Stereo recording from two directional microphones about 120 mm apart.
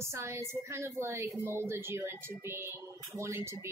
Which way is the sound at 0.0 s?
25° right (ahead or behind).